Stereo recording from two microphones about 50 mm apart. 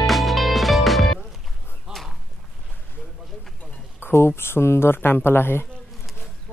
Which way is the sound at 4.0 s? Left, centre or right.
Left.